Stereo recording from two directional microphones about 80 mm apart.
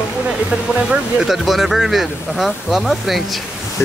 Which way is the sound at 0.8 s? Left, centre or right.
Centre.